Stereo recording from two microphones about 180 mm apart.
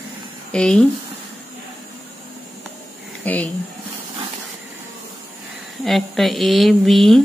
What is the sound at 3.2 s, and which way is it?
Speech, 10° left (ahead or behind).